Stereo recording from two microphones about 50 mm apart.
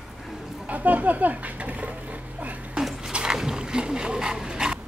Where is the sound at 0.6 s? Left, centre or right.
Right.